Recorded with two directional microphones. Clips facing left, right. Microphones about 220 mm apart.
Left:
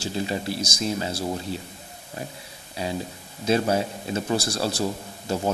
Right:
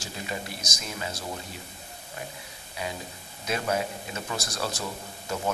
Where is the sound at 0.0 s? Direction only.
30° left (ahead or behind).